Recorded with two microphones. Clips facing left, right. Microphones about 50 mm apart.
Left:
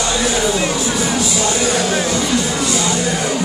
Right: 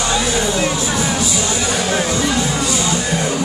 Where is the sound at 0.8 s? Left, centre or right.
Centre.